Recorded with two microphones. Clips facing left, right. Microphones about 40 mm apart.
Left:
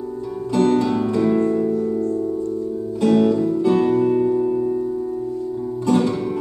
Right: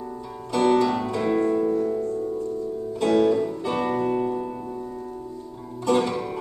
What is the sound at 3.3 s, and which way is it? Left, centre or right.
Music, centre.